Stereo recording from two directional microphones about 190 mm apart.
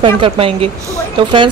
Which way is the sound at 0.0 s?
30° right (ahead or behind).